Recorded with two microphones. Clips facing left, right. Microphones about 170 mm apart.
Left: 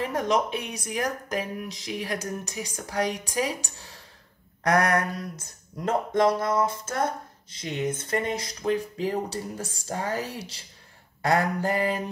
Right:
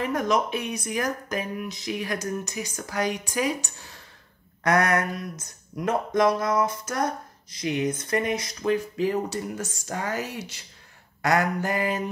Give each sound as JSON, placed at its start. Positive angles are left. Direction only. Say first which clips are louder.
{"t": 0.0, "sound": "speech", "louder": "right 1 dB", "side_deg": 30}
{"t": 4.7, "sound": "a sound", "louder": "even", "side_deg": -25}
{"t": 6.1, "sound": "music", "louder": "right 1 dB", "side_deg": 25}
{"t": 8.4, "sound": "speech", "louder": "right 1 dB", "side_deg": 30}